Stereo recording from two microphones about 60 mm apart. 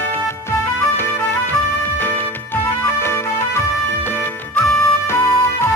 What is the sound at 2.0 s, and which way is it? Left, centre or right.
Music, left.